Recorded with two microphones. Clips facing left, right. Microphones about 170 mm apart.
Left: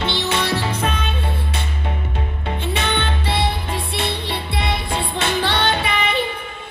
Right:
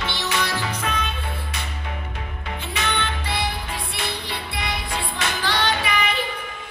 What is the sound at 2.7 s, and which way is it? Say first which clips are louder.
Music: left 3 dB; 25° left (ahead or behind).